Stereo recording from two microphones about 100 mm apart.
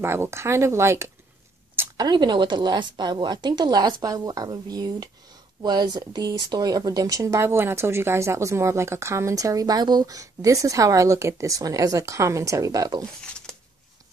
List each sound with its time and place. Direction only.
0.0 s speech: 25° right (ahead or behind)
2.0 s a woman's voice: 45° right (ahead or behind)
13.0 s speech: 5° left (ahead or behind)